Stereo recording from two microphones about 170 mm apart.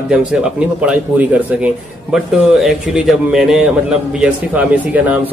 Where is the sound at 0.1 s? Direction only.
5° right (ahead or behind).